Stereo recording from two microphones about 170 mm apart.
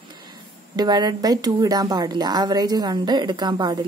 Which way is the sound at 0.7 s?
25° right (ahead or behind).